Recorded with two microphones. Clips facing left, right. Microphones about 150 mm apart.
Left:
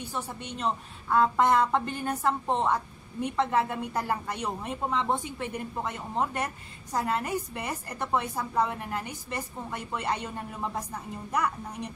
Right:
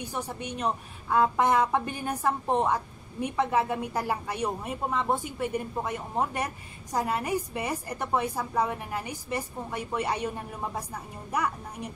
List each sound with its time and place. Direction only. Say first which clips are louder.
0.0 s a woman's voice: right 2 dB; 15° right (ahead or behind)
11.3 s a woman's voice: even; 10° right (ahead or behind)